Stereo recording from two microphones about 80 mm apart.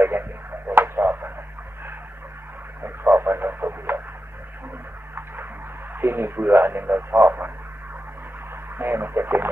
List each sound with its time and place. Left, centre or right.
0.0 s radio: right
2.8 s radio: right
5.1 s a sound: right
5.9 s speech: right
8.7 s radio: right